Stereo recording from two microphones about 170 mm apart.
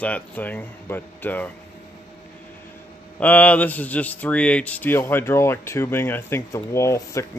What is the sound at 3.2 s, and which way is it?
A man's voice, 10° left (ahead or behind).